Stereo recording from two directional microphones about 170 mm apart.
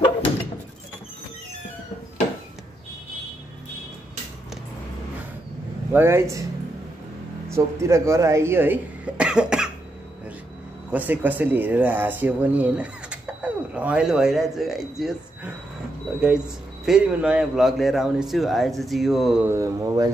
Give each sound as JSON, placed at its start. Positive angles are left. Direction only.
{"t": 5.9, "sound": "speech", "side_deg": -15}
{"t": 7.4, "sound": "speech", "side_deg": -15}
{"t": 10.9, "sound": "speech", "side_deg": -10}
{"t": 19.4, "sound": "speech", "side_deg": -15}